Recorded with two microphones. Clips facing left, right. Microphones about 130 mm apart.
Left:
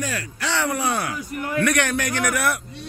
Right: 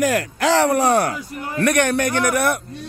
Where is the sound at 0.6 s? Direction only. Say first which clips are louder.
Right 6 dB; 40° right (ahead or behind).